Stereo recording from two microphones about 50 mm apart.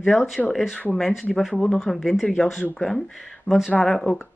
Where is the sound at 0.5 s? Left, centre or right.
Centre.